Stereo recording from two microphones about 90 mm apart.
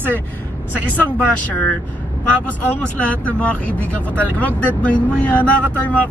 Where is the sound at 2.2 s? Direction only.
15° left (ahead or behind).